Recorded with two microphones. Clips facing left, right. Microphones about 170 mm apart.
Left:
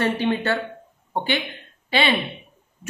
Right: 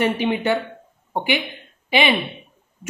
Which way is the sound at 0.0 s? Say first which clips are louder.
Right 2 dB; 15° right (ahead or behind).